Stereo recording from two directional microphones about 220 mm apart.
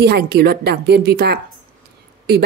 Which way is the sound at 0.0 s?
45° right (ahead or behind).